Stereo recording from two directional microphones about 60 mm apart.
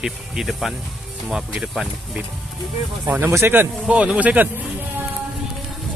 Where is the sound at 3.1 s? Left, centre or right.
Right.